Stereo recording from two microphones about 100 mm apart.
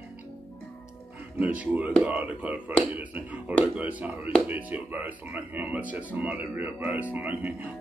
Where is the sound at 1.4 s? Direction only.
15° right (ahead or behind).